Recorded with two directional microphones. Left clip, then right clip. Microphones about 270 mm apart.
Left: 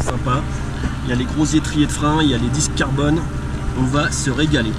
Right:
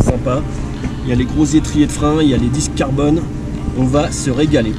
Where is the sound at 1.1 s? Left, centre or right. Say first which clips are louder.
Right 4 dB; centre.